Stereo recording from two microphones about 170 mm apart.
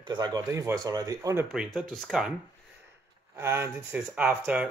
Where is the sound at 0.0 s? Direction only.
25° right (ahead or behind).